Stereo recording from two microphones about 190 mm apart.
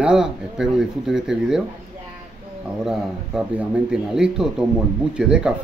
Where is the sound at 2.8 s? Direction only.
Centre (ahead or behind).